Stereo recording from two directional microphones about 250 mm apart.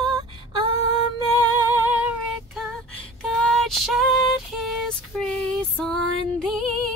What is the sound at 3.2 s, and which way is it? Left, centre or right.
Female singing, centre.